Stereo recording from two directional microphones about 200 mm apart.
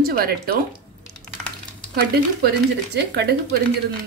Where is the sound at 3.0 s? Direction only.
60° right (ahead or behind).